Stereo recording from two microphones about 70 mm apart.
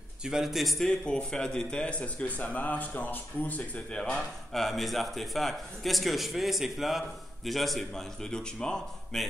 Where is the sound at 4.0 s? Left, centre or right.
Centre.